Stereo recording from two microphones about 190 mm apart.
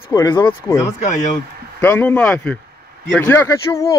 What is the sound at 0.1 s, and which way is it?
Speech, 15° left (ahead or behind).